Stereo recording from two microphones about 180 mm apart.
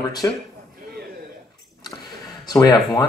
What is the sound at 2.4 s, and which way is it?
Speech, 20° left (ahead or behind).